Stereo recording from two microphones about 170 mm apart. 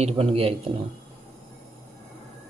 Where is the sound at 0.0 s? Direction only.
35° right (ahead or behind).